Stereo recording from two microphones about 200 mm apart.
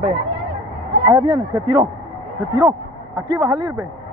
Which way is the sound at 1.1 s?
20° right (ahead or behind).